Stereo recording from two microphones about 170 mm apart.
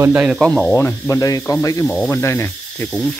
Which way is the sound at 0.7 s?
15° left (ahead or behind).